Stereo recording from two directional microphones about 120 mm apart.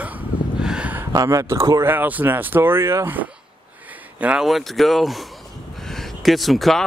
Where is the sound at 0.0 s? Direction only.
10° right (ahead or behind).